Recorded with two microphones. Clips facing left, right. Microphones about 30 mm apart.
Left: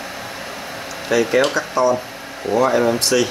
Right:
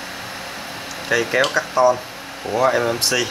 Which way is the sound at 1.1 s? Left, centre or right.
Centre.